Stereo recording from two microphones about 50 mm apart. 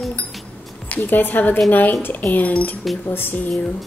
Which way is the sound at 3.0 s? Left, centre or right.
Left.